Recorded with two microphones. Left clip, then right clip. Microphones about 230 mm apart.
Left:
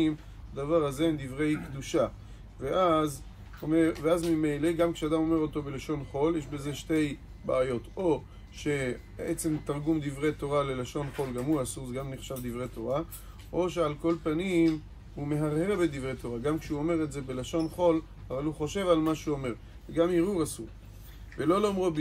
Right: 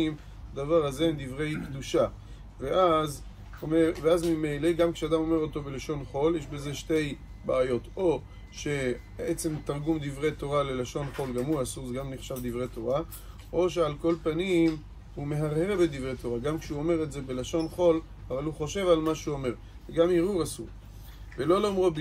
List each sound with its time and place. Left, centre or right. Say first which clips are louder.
0.6 s a man's voice: right 2 dB; centre